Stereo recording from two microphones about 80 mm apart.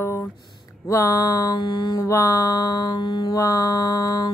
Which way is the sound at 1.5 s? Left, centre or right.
Left.